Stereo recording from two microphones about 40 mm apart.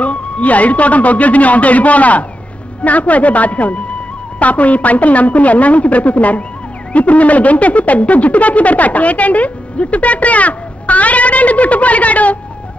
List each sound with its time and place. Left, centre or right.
0.0 s speech: left